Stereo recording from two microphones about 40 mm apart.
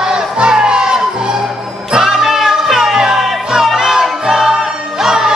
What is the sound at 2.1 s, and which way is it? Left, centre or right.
Music, centre.